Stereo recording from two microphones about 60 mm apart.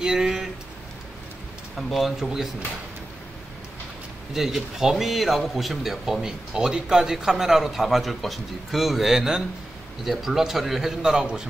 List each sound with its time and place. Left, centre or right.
0.0 s a sound: centre
1.8 s speech: centre
4.3 s a man's voice: centre